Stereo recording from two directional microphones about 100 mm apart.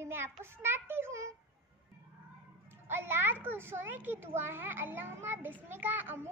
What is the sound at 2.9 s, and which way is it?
A child's voice, 20° right (ahead or behind).